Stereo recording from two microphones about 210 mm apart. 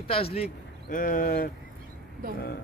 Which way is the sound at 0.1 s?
30° left (ahead or behind).